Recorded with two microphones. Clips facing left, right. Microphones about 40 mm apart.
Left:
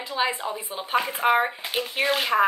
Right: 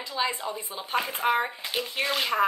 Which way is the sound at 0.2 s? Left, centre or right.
Left.